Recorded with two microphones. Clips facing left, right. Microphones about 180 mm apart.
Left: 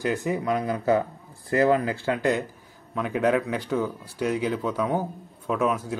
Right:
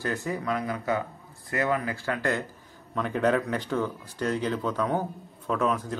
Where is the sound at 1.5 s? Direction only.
30° left (ahead or behind).